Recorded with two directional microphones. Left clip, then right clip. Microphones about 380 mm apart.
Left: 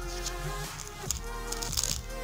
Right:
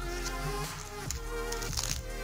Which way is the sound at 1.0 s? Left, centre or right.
Centre.